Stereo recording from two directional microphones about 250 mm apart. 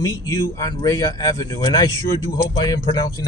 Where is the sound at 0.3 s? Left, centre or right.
Centre.